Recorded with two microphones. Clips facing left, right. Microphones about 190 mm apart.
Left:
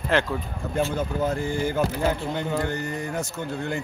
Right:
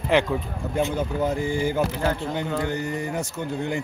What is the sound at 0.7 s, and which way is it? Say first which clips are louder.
Speech: right 1 dB; 15° right (ahead or behind).